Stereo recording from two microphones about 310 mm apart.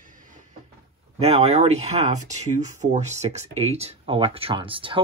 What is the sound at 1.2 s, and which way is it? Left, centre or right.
Speech, centre.